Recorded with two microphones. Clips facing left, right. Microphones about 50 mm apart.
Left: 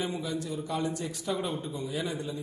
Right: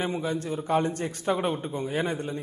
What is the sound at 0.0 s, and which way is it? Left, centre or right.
A man's voice, right.